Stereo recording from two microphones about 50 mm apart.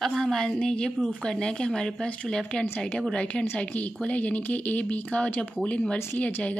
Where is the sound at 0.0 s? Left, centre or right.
Centre.